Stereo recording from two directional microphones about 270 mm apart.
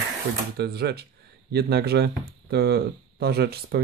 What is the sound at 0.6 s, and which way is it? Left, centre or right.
Speech, right.